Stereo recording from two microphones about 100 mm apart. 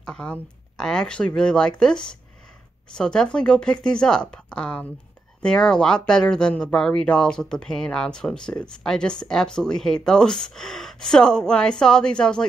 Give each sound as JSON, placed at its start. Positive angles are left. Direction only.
{"t": 0.0, "sound": "speech", "side_deg": 10}